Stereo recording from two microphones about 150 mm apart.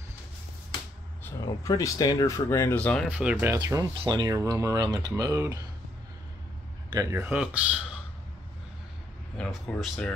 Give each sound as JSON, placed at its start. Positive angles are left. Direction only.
{"t": 1.4, "sound": "speech", "side_deg": 25}
{"t": 3.1, "sound": "speech", "side_deg": -10}
{"t": 3.5, "sound": "speech", "side_deg": -25}
{"t": 6.9, "sound": "speech", "side_deg": -20}
{"t": 9.4, "sound": "speech", "side_deg": 0}